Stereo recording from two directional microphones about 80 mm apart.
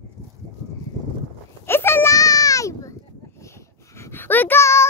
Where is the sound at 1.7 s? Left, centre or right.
Left.